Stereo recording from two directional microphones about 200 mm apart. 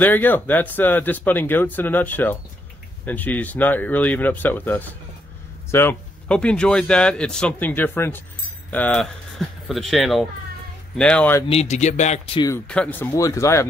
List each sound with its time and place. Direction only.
0.0 s speech: 10° left (ahead or behind)
11.4 s speech: 35° left (ahead or behind)
12.4 s speech: 15° left (ahead or behind)
12.6 s speech: 5° left (ahead or behind)